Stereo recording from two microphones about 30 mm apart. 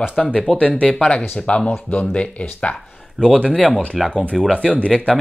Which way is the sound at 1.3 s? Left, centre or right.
Left.